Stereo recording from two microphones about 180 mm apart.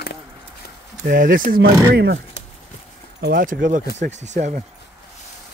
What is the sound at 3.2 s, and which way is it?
Speech, 55° right (ahead or behind).